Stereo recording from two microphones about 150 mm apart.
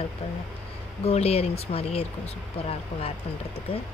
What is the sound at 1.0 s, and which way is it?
Speech, 45° left (ahead or behind).